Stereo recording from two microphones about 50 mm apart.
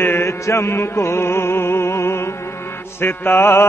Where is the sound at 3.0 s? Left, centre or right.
Left.